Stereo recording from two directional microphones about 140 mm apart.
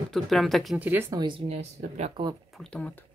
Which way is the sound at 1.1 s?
30° right (ahead or behind).